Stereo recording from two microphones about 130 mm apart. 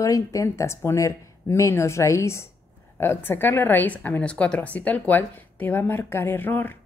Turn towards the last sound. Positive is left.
turn(degrees=15)  # may be behind; listen again after turning